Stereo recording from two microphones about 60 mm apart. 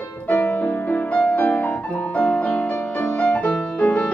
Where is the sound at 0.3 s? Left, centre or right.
Left.